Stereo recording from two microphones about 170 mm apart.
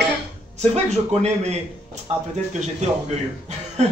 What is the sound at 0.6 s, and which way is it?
Speech, 40° right (ahead or behind).